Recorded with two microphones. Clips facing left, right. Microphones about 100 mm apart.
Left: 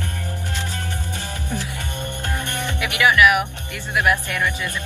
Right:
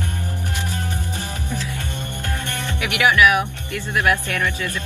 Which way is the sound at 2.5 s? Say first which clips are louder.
Left 1 dB; 15° left (ahead or behind).